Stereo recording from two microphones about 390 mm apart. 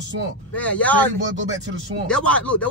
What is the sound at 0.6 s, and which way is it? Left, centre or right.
Speech, centre.